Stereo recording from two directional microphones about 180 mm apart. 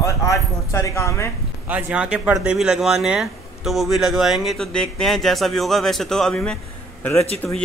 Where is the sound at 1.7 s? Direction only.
5° right (ahead or behind).